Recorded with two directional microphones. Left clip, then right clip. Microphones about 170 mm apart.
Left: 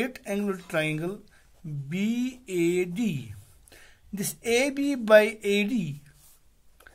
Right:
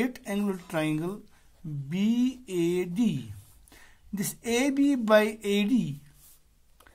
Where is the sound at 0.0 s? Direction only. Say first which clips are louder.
Left 1 dB; 15° left (ahead or behind).